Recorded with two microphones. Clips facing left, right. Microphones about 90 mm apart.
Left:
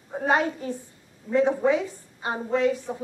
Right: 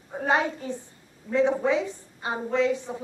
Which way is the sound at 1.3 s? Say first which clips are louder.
Left 1 dB; 15° left (ahead or behind).